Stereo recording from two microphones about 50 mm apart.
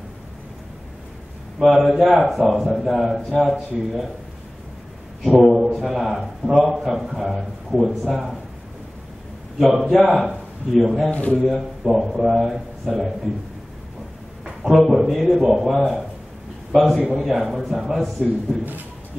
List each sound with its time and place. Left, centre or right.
1.6 s a man's voice: centre
5.4 s a man's voice: centre
6.7 s a man's voice: centre
9.6 s a man's voice: centre
11.1 s speech: left
11.4 s a man's voice: centre
14.4 s a man's voice: centre